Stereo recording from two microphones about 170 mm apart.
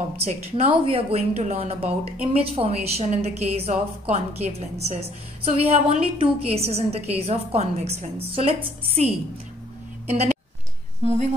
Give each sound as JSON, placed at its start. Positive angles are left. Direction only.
{"t": 0.2, "sound": "a woman's voice", "side_deg": -35}